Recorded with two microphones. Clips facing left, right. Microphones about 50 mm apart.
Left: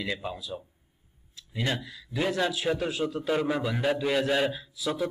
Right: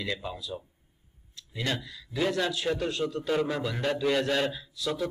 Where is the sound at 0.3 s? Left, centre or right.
Centre.